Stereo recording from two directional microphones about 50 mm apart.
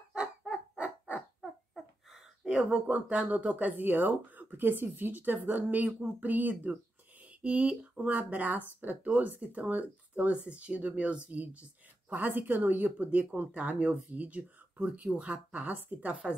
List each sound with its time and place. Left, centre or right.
0.7 s owl: right
2.0 s a sound: centre
2.7 s speech: right